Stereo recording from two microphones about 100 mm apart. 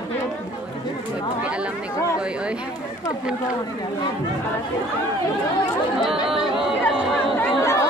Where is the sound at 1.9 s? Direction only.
35° left (ahead or behind).